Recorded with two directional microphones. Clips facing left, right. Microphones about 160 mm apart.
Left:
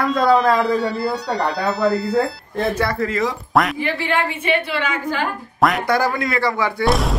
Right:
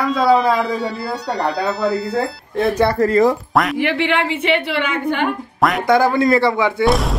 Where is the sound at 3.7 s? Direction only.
75° right (ahead or behind).